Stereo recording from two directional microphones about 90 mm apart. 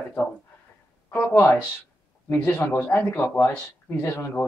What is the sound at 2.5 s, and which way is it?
Speech, 20° left (ahead or behind).